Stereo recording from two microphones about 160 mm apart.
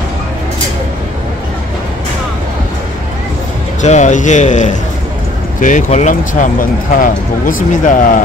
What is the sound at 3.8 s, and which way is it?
Speech, 45° left (ahead or behind).